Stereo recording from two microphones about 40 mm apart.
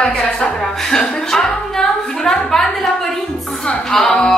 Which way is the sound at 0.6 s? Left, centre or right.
Centre.